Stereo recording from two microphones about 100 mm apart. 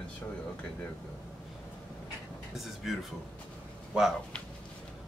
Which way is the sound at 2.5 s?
Centre (ahead or behind).